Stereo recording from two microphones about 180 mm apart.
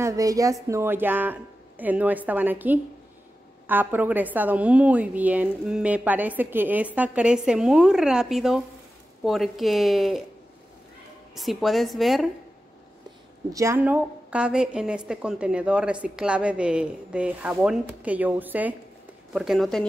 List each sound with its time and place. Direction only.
0.0 s a woman's voice: 20° right (ahead or behind); by 10.2 s centre (ahead or behind)
11.3 s speech: centre (ahead or behind)
13.5 s a woman's voice: 15° right (ahead or behind); by 19.9 s centre (ahead or behind)